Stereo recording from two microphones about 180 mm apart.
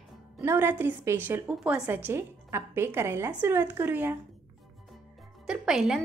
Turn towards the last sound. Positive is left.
turn(degrees=-5)  # may be behind; listen again after turning